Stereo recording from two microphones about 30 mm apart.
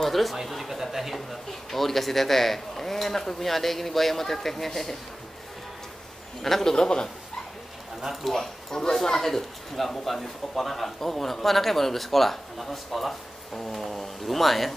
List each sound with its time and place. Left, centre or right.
0.0 s speech: centre
0.7 s a sound: centre
1.7 s speech: centre
6.4 s speech: centre
6.7 s a man's voice: left
8.0 s speech: centre
9.0 s speech: centre